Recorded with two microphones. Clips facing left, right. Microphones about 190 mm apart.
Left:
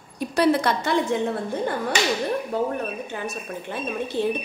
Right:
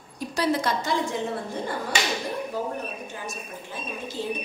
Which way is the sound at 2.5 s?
60° left (ahead or behind).